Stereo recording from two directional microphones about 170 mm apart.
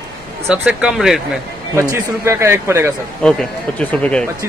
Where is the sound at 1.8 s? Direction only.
15° right (ahead or behind).